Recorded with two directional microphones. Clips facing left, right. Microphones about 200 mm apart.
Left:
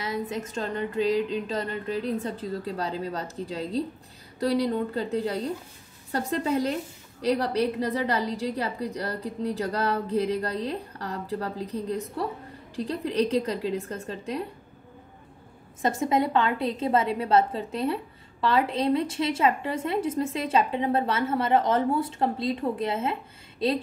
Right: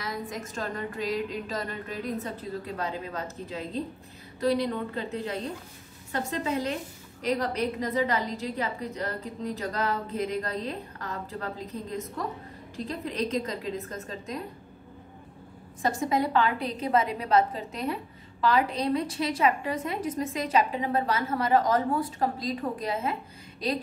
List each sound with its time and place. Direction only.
0.6 s a woman's voice: 30° left (ahead or behind)
15.8 s a woman's voice: 20° left (ahead or behind)